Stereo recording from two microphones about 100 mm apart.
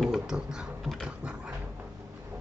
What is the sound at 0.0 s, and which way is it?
Typing, 5° right (ahead or behind).